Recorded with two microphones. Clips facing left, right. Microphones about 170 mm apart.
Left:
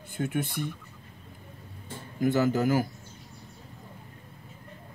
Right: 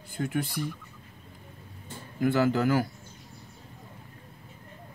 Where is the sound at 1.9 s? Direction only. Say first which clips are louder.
Even; 40° left (ahead or behind).